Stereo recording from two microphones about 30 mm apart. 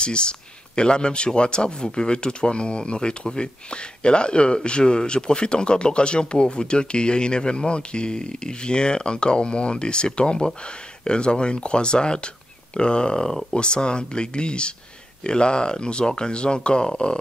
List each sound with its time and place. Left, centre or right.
0.0 s speech: left